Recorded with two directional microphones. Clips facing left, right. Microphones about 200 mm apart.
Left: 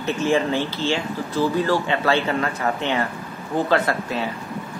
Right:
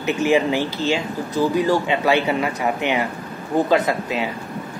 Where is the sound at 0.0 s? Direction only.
15° right (ahead or behind).